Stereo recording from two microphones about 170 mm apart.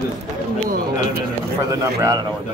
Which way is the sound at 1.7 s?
20° right (ahead or behind).